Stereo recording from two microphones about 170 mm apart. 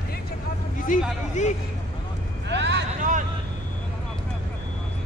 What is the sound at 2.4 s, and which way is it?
Vehicle, 90° right.